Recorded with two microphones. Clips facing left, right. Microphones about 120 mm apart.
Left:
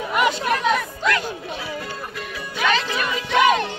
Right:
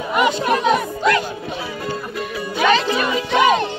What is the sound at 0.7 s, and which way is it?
Music, 20° right (ahead or behind).